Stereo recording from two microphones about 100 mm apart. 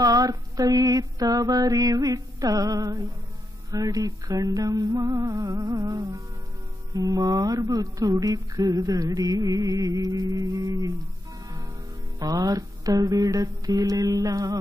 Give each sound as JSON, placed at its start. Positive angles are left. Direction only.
{"t": 0.0, "sound": "speech", "side_deg": -35}
{"t": 12.2, "sound": "speech", "side_deg": -40}